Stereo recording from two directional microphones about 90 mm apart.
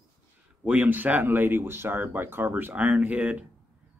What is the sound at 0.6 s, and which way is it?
Speech, 20° right (ahead or behind).